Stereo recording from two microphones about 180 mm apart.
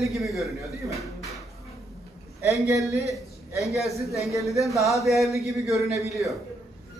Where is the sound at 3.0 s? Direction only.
15° right (ahead or behind).